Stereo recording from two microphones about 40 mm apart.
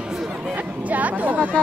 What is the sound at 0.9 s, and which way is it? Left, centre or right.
Speech, right.